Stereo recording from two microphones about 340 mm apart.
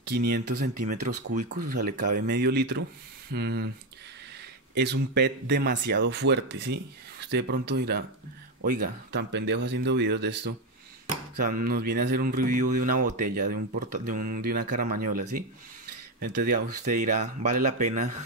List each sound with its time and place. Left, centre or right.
0.0 s speech: right
4.7 s speech: right
16.3 s speech: right